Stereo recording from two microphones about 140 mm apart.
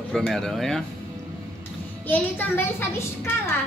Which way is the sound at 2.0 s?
15° left (ahead or behind).